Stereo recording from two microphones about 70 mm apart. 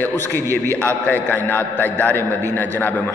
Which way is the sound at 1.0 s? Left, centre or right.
Left.